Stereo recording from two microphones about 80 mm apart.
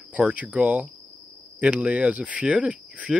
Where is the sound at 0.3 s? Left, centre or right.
Centre.